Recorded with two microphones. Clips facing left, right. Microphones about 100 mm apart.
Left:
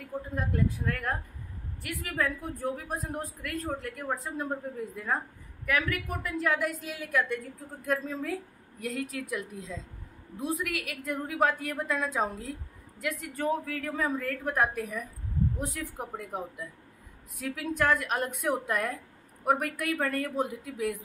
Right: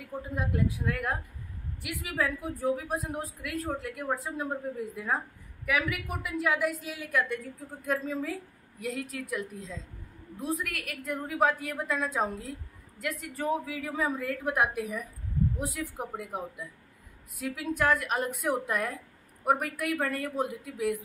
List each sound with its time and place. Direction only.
0.4 s a woman's voice: 5° right (ahead or behind)